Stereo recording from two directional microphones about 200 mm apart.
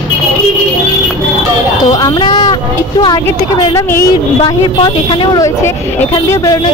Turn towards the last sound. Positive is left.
turn(degrees=15)  # may be behind; listen again after turning